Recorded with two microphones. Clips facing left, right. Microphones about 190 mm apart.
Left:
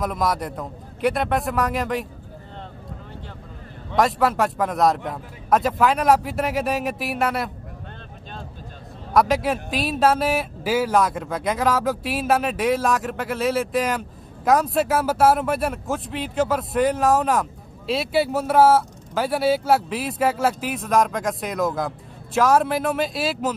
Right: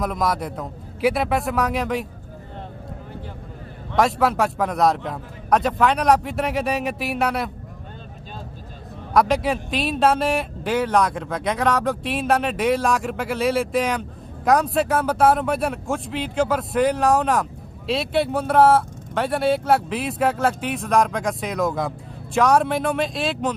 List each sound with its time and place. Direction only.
0.0 s speech: centre (ahead or behind)
3.9 s speech: centre (ahead or behind)
9.1 s speech: centre (ahead or behind)